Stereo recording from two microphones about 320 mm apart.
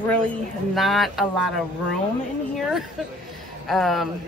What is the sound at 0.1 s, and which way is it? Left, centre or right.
Speech, centre.